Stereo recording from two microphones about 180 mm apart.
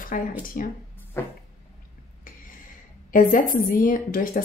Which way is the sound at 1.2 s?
15° left (ahead or behind).